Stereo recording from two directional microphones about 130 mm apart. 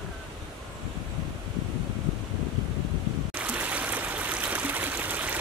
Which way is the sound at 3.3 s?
10° right (ahead or behind).